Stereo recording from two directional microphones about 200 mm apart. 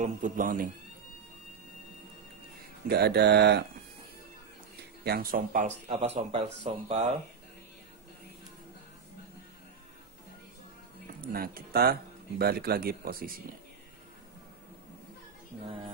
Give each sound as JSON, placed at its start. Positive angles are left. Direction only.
{"t": 0.0, "sound": "speech", "side_deg": -40}
{"t": 2.9, "sound": "speech", "side_deg": -55}
{"t": 5.0, "sound": "speech", "side_deg": -45}
{"t": 11.3, "sound": "speech", "side_deg": -50}